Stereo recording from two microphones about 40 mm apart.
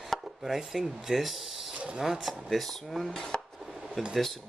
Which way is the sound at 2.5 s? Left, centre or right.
Centre.